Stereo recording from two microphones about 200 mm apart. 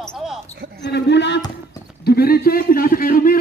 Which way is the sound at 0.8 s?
60° left (ahead or behind).